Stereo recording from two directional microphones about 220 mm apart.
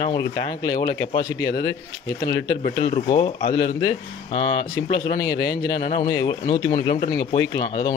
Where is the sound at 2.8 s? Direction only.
20° left (ahead or behind).